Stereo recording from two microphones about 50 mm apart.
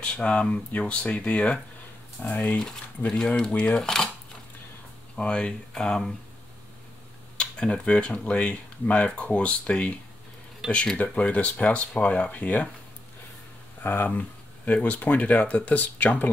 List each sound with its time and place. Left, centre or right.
0.0 s speech: left
2.2 s speech: left
3.2 s speech: centre
5.1 s speech: centre
7.3 s speech: centre
11.0 s speech: left
13.8 s speech: left